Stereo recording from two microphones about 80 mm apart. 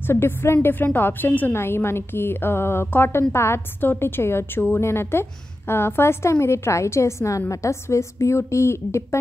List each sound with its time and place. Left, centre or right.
0.0 s a woman's voice: left